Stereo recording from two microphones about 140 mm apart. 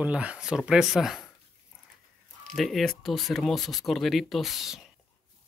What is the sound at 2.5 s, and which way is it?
Speech, centre (ahead or behind).